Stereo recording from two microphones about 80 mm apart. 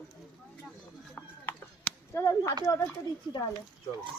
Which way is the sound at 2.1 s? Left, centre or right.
Left.